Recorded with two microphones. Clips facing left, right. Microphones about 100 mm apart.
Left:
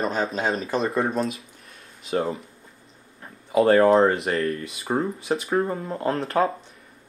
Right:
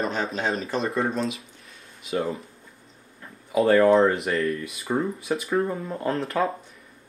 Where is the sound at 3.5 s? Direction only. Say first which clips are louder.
Left 1 dB; 30° left (ahead or behind).